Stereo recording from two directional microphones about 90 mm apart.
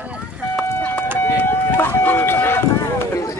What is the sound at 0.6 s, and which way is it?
Vehicle, 20° left (ahead or behind).